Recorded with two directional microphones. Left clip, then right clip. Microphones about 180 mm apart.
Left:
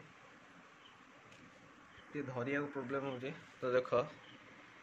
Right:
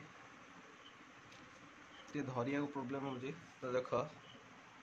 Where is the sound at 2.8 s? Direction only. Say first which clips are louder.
Left 3 dB; 10° left (ahead or behind).